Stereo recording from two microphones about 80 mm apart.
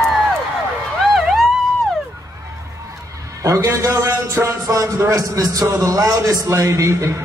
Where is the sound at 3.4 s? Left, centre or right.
Right.